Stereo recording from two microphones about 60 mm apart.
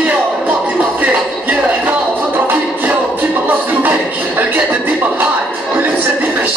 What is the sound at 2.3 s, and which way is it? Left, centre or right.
Music, right.